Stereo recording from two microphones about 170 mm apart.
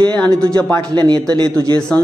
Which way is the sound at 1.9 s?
5° left (ahead or behind).